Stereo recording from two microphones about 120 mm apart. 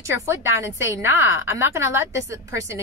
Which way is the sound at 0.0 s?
25° right (ahead or behind).